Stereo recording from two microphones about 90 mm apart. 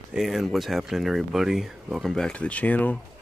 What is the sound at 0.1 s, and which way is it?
Speech, centre (ahead or behind).